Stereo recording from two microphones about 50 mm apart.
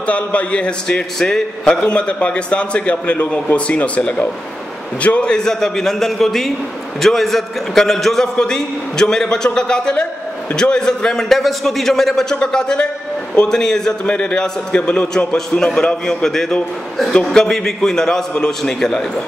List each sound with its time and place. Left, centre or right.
0.0 s a man's voice: left; by 19.2 s centre